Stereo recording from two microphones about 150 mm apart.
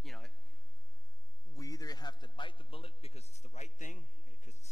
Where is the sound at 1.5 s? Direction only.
25° left (ahead or behind).